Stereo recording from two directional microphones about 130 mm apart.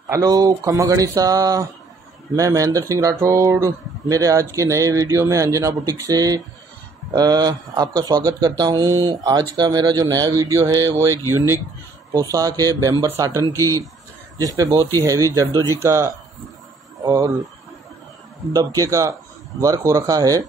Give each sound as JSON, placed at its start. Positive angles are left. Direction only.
{"t": 0.1, "sound": "speech", "side_deg": -30}
{"t": 12.1, "sound": "speech", "side_deg": -25}
{"t": 18.5, "sound": "speech", "side_deg": -30}